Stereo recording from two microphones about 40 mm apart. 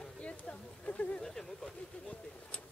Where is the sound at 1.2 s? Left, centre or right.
Centre.